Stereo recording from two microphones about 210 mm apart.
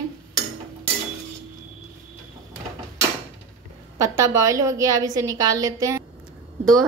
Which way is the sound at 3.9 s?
15° right (ahead or behind).